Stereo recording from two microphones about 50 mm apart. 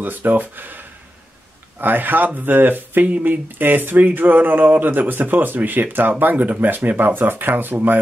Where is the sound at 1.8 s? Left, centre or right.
Right.